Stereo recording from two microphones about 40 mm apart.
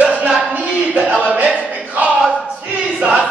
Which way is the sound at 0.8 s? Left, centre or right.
Right.